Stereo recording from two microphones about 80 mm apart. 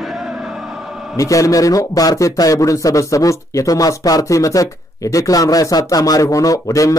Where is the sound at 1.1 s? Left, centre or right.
Left.